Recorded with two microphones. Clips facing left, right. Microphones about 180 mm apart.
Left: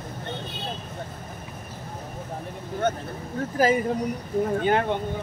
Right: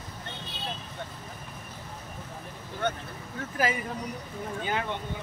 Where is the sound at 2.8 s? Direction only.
45° left (ahead or behind).